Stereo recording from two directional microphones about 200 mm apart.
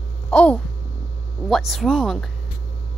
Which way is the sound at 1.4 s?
Centre (ahead or behind).